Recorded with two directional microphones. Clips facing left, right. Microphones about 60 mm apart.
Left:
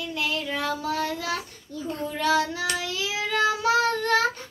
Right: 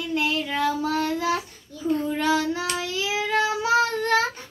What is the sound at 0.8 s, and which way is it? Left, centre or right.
Child singing, right.